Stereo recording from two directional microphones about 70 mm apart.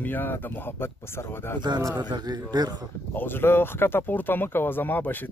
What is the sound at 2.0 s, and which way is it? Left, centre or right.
Speech, right.